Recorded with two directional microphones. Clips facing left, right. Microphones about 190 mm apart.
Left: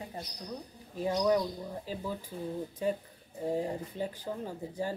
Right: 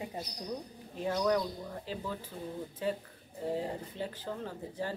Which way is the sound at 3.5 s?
15° left (ahead or behind).